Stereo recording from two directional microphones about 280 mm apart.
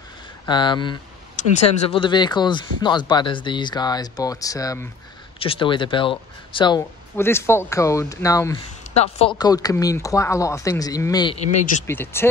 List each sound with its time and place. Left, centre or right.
0.5 s speech: centre
8.9 s speech: left
11.8 s speech: centre